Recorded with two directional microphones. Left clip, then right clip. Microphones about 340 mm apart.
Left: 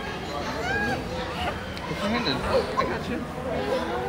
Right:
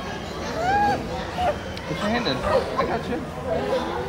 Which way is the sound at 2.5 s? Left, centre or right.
Right.